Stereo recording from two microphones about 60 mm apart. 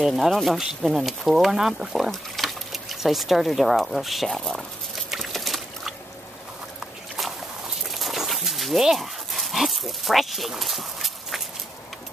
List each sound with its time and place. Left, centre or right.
0.0 s speech: centre
5.2 s liquid: centre
7.9 s dog: centre